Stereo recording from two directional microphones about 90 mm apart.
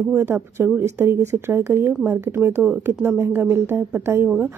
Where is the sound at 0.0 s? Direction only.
25° right (ahead or behind).